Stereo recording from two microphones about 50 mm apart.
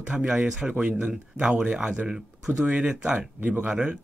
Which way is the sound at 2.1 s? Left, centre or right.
Centre.